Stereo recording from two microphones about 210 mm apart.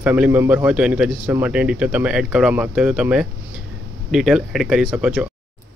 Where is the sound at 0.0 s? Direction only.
5° right (ahead or behind).